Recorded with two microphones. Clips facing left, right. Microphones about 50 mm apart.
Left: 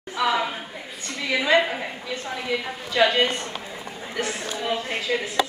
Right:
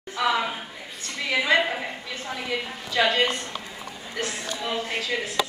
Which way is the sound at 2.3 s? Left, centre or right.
Centre.